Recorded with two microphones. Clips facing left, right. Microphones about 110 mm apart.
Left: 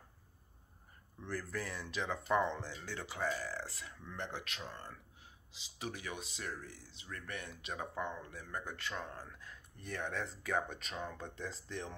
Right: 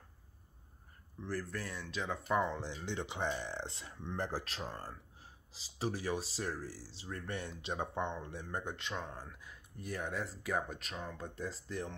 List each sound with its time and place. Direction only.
1.2 s speech: centre (ahead or behind)
2.6 s speech: 20° right (ahead or behind); by 12.0 s centre (ahead or behind)